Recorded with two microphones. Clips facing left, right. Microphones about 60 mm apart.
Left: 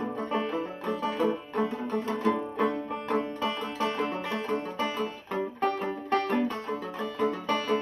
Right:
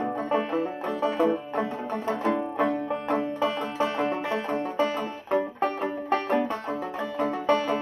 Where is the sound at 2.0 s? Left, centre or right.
Right.